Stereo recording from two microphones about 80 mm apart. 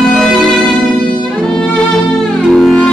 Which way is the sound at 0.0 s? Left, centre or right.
Centre.